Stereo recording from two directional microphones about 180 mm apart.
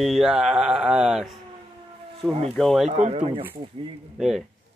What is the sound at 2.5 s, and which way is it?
Speech, centre (ahead or behind).